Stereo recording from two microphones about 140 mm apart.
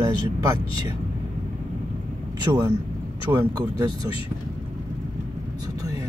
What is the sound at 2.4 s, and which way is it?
Speech, 30° right (ahead or behind).